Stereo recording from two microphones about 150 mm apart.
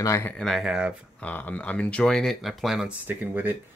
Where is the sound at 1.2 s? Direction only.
10° left (ahead or behind); by 3.6 s 10° right (ahead or behind).